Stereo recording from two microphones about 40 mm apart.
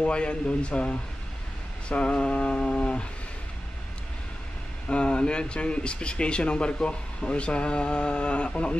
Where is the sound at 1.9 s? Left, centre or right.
Left.